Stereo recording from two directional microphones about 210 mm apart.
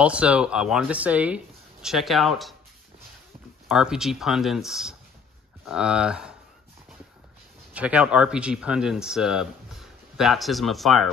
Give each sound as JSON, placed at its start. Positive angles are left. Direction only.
{"t": 0.0, "sound": "speech", "side_deg": -5}
{"t": 3.6, "sound": "speech", "side_deg": -5}
{"t": 7.7, "sound": "speech", "side_deg": -5}